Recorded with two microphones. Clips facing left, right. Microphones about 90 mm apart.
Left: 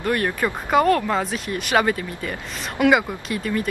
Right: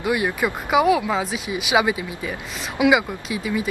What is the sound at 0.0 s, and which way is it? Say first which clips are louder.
Speech: even; 10° right (ahead or behind).